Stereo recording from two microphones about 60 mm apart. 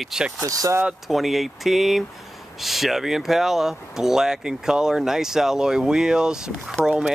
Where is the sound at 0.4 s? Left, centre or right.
Right.